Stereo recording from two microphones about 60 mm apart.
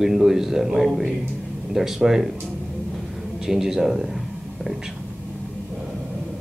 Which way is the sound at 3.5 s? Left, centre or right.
Centre.